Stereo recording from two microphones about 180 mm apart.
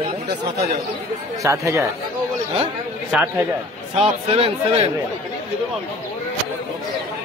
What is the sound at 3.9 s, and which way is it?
Speech, 30° right (ahead or behind).